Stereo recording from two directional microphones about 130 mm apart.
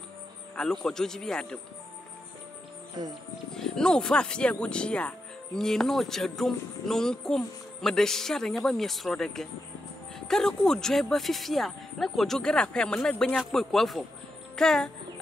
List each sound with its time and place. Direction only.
0.6 s speech: 5° left (ahead or behind)
3.0 s speech: 30° right (ahead or behind)
3.5 s speech: 5° left (ahead or behind)